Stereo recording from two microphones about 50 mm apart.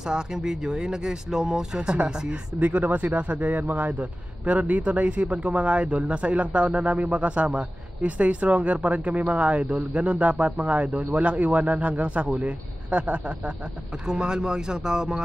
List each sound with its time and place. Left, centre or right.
0.0 s speech: centre
2.6 s a man's voice: right
14.0 s speech: centre